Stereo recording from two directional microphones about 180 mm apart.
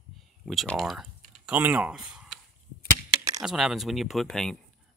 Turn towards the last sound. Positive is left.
turn(degrees=5)  # may be behind; listen again after turning